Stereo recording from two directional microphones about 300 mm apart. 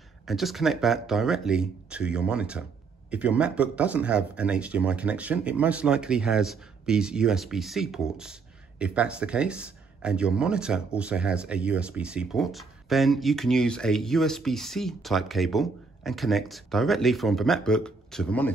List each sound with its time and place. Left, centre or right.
0.2 s speech: centre